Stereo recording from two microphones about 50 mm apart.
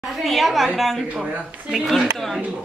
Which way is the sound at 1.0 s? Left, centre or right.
Right.